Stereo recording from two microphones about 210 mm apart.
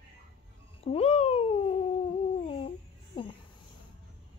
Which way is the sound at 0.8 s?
30° left (ahead or behind).